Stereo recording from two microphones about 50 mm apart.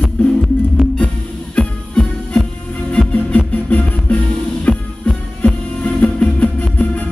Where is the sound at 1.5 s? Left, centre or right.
Centre.